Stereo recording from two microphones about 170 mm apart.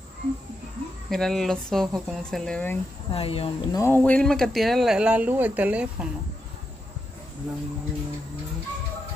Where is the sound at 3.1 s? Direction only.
35° left (ahead or behind).